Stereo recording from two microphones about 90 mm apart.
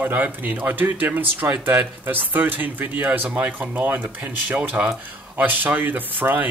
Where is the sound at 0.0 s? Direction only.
20° right (ahead or behind).